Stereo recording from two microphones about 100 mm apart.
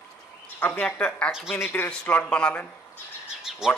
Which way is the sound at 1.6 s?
20° left (ahead or behind).